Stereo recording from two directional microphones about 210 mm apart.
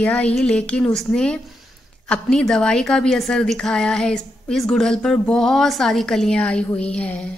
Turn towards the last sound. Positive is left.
turn(degrees=5)  # may be behind; listen again after turning